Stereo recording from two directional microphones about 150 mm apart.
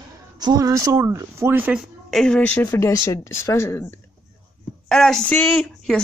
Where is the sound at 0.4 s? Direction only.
25° right (ahead or behind); by 1.9 s 10° right (ahead or behind).